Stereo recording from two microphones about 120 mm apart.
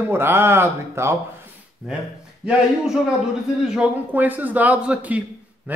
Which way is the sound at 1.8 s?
5° right (ahead or behind).